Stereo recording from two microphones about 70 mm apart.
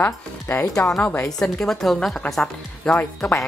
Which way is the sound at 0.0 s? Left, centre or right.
Left.